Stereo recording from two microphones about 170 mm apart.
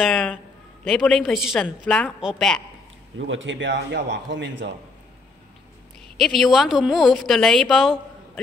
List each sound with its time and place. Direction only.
0.0 s a man's voice: 5° left (ahead or behind)
3.2 s a man's voice: 90° right
6.1 s a woman's voice: centre (ahead or behind)